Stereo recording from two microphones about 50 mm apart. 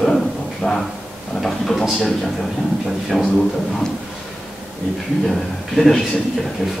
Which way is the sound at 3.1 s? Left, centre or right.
Centre.